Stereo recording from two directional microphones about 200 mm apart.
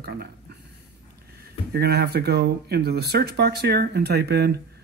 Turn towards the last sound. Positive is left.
turn(degrees=-55)  # may be behind; listen again after turning